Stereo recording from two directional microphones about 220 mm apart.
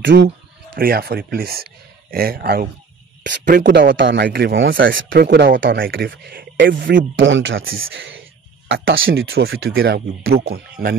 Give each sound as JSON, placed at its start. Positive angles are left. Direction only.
{"t": 0.0, "sound": "speech", "side_deg": -55}
{"t": 0.7, "sound": "speech", "side_deg": -45}
{"t": 3.7, "sound": "speech", "side_deg": -55}
{"t": 6.7, "sound": "speech", "side_deg": -55}